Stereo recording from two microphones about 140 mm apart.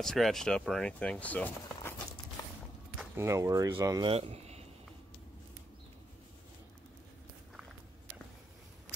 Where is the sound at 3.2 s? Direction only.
20° right (ahead or behind).